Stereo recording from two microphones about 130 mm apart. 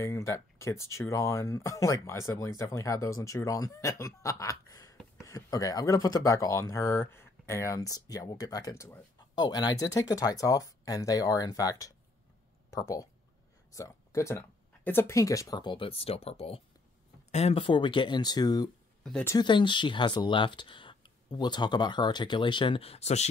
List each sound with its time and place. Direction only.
0.0 s speech: 20° left (ahead or behind)
9.3 s speech: 30° left (ahead or behind); by 17.6 s 60° left (ahead or behind)
17.6 s speech: 40° left (ahead or behind); by 23.2 s 55° left (ahead or behind)